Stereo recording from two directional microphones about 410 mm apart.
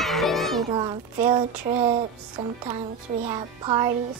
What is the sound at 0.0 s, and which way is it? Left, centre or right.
Children playing, centre.